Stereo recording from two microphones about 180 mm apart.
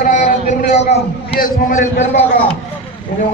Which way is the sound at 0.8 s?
65° left (ahead or behind).